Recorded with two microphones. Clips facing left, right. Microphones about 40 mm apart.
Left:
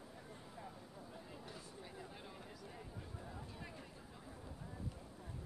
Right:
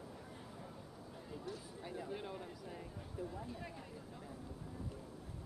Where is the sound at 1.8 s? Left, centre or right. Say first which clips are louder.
Right 8 dB; centre.